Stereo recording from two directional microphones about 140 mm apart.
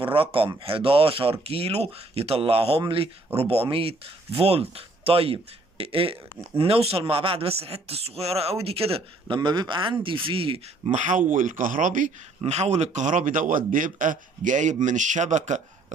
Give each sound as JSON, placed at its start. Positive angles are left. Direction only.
{"t": 0.0, "sound": "speech", "side_deg": -40}
{"t": 10.9, "sound": "speech", "side_deg": -60}